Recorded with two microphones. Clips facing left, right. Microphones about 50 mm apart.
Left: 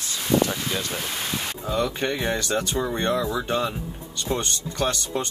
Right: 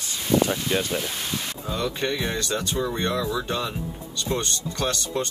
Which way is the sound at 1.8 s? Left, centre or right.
Left.